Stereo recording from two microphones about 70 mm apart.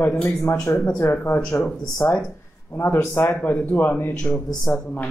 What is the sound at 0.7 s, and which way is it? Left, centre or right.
Speech, left.